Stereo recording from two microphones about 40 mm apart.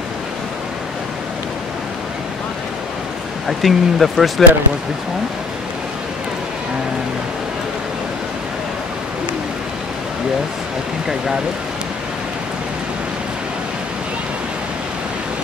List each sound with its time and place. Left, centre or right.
3.4 s speech: centre